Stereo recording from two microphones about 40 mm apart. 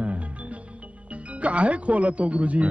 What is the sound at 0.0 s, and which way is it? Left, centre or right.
Music, right.